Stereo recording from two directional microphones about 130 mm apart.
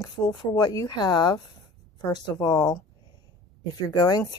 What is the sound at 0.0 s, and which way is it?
Speech, 30° left (ahead or behind).